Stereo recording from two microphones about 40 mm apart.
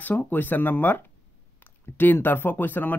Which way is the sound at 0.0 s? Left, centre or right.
Left.